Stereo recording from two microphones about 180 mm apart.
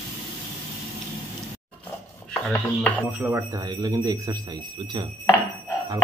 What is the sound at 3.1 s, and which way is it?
Speech, 10° right (ahead or behind).